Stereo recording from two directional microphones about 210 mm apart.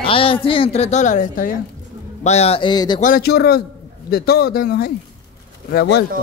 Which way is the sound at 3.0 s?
45° left (ahead or behind).